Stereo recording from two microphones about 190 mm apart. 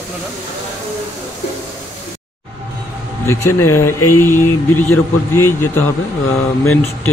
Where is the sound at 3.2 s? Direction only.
15° left (ahead or behind).